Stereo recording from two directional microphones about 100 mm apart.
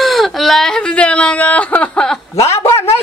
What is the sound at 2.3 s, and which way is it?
Speech, 90° left.